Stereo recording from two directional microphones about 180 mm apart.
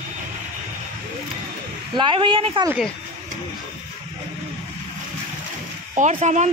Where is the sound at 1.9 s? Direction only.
25° right (ahead or behind).